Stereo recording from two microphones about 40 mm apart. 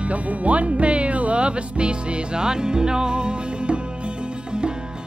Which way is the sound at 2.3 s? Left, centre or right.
Centre.